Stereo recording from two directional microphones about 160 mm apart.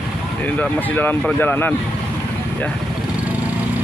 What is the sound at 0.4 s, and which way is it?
Speech, 10° left (ahead or behind).